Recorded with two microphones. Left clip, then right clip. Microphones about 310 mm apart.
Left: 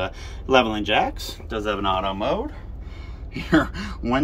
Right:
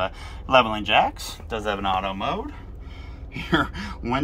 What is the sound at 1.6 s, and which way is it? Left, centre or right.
Speech, centre.